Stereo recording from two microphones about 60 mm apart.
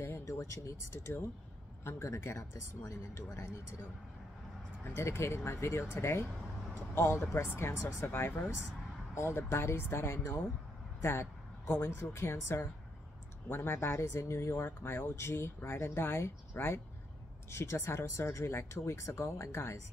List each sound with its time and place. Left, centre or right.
0.2 s speech: left
4.9 s speech: left